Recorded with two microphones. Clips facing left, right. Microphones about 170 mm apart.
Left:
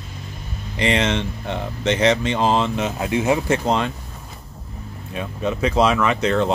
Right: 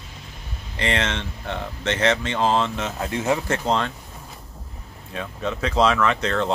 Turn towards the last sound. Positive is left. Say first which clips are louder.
# left 3 dB
turn(degrees=15)  # may be behind; listen again after turning